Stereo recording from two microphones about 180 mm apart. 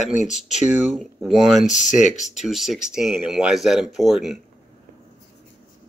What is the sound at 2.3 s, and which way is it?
Speech, centre (ahead or behind).